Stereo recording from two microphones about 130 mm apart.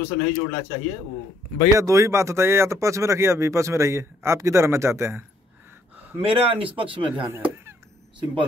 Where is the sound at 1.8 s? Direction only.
25° right (ahead or behind).